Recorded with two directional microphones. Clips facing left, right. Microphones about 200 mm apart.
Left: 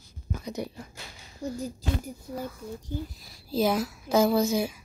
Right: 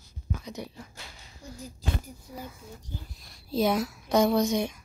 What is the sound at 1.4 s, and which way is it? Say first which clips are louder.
Speech: left 12 dB; 75° left (ahead or behind).